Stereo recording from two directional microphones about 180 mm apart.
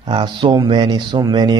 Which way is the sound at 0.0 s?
25° right (ahead or behind).